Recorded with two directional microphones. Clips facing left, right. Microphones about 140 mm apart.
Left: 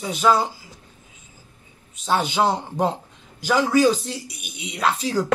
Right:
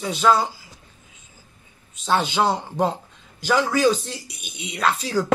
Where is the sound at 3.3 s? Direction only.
10° left (ahead or behind).